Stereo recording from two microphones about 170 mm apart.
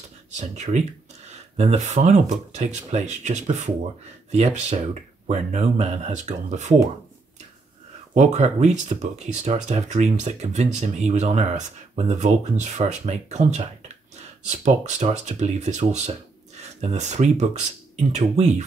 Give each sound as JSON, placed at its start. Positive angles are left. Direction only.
{"t": 0.3, "sound": "speech", "side_deg": -45}
{"t": 8.1, "sound": "speech", "side_deg": -45}